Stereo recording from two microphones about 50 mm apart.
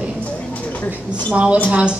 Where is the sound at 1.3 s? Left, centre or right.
Right.